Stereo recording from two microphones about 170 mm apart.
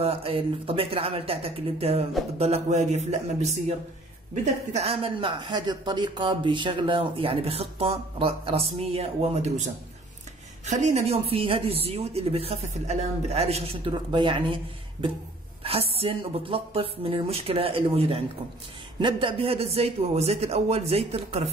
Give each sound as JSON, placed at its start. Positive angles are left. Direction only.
{"t": 0.0, "sound": "speech", "side_deg": -35}
{"t": 4.7, "sound": "speech", "side_deg": -35}